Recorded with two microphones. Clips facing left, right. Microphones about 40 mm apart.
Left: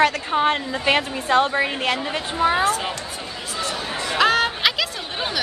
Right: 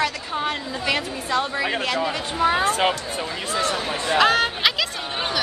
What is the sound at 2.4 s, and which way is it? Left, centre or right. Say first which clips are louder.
Speech: left 1 dB; centre.